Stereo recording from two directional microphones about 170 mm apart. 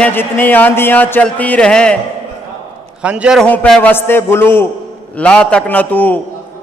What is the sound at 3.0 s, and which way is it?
Speech, 5° right (ahead or behind).